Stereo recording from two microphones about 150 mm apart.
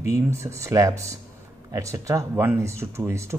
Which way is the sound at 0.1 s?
20° right (ahead or behind).